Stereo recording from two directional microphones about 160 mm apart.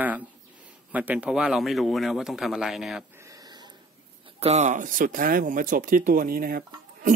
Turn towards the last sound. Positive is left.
turn(degrees=-65)  # may be behind; listen again after turning